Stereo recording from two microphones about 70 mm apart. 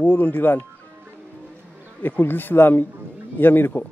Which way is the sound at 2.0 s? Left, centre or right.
Left.